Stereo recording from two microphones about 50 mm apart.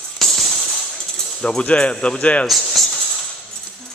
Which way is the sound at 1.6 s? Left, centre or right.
Left.